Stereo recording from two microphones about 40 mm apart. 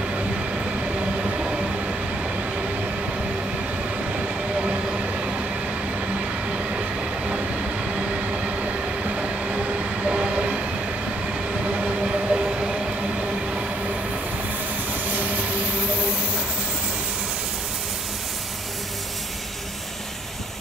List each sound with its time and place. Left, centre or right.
9.1 s train: right
11.6 s train: right
15.1 s vehicle: right